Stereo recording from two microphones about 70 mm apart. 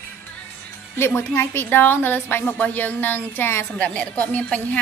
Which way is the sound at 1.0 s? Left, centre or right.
Left.